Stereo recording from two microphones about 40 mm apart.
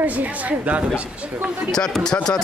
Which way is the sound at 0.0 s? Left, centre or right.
Right.